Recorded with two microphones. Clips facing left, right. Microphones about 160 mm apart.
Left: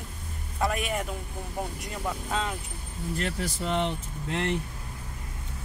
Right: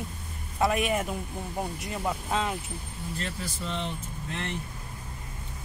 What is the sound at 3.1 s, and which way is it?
Speech, 65° left (ahead or behind).